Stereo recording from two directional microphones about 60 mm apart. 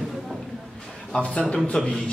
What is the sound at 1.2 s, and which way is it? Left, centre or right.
Speech, centre.